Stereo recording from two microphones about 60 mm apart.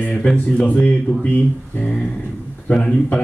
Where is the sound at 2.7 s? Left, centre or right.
Centre.